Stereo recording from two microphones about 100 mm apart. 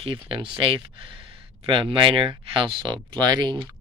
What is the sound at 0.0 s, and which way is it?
Speech, 65° right (ahead or behind).